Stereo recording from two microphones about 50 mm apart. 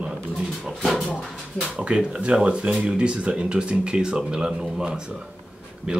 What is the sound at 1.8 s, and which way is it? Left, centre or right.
Speech, centre.